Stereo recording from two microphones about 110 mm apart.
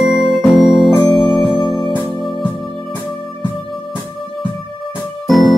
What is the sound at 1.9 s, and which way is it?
Music, 50° left (ahead or behind).